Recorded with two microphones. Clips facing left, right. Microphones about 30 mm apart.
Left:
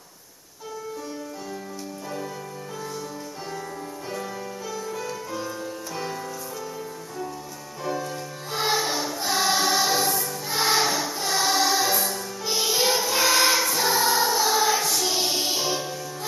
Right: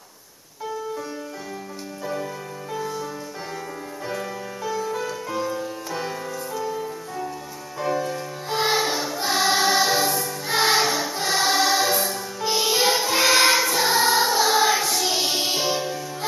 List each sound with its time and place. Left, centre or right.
4.1 s music: centre
11.1 s music: right
12.7 s choir: centre
14.9 s music: centre